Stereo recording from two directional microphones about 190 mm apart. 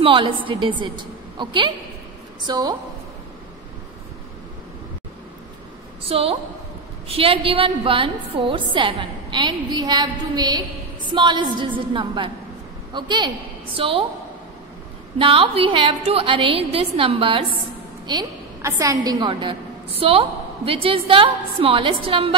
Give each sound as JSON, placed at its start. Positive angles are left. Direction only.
{"t": 0.0, "sound": "a woman's voice", "side_deg": -25}
{"t": 6.0, "sound": "a woman's voice", "side_deg": -30}
{"t": 15.1, "sound": "a woman's voice", "side_deg": -30}